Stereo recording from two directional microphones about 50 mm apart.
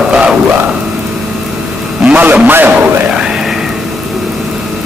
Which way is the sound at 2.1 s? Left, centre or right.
Right.